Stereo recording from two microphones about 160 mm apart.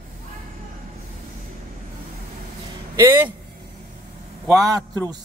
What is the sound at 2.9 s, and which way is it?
Speech, 15° right (ahead or behind).